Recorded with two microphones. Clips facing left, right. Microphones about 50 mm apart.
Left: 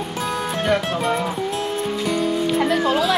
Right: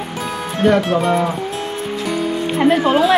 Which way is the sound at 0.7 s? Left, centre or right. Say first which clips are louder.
Right 7 dB; centre.